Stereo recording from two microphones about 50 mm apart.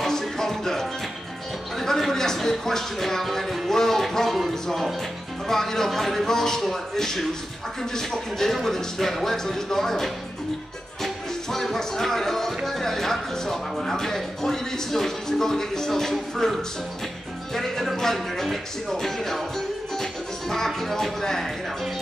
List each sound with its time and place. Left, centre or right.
0.0 s music: centre
1.8 s speech: centre
5.5 s speech: centre
11.5 s music: centre
12.6 s speech: centre
17.6 s music: centre
20.0 s speech: centre